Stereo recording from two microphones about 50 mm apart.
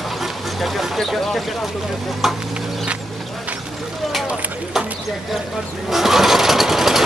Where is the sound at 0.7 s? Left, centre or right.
Centre.